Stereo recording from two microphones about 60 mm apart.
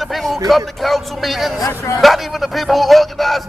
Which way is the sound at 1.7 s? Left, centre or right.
Left.